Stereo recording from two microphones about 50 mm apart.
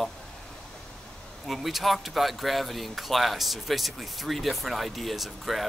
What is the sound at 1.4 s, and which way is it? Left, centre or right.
Speech, centre.